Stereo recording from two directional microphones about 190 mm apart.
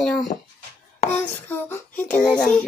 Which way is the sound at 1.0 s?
35° left (ahead or behind).